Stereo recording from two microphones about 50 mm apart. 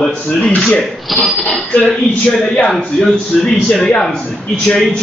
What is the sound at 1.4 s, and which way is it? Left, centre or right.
Speech, centre.